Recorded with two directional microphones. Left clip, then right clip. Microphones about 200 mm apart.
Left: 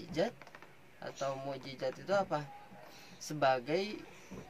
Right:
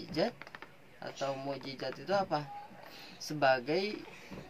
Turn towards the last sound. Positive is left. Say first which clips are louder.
# right 2 dB
turn(degrees=0)  # may be behind; listen again after turning